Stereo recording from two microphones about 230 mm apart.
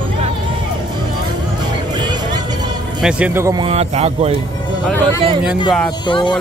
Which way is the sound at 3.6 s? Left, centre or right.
Right.